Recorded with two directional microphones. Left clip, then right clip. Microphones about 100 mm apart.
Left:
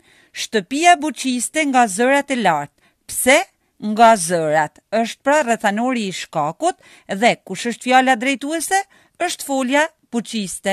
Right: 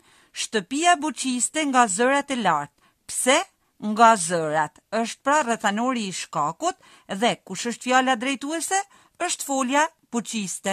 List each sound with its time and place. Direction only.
0.3 s speech: 25° left (ahead or behind)